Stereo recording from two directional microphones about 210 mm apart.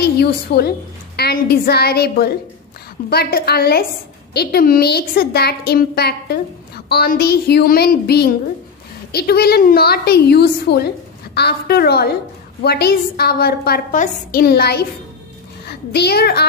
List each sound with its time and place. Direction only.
0.0 s a woman's voice: 50° left (ahead or behind)